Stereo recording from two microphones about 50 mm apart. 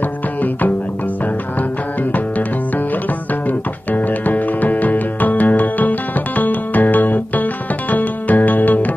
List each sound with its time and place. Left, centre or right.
0.4 s music: left
3.4 s music: left